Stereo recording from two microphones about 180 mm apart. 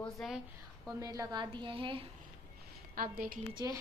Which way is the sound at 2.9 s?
55° right (ahead or behind).